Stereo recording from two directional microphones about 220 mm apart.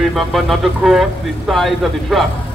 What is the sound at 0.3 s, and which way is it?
Speech, centre (ahead or behind).